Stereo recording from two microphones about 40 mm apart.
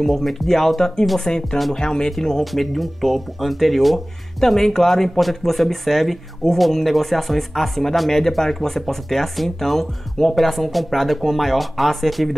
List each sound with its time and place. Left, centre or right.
0.0 s speech: centre